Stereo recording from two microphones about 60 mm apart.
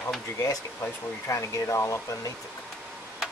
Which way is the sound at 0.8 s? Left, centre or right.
Left.